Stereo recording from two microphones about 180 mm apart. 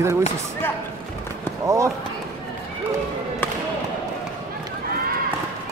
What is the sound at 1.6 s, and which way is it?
Speech, 15° right (ahead or behind).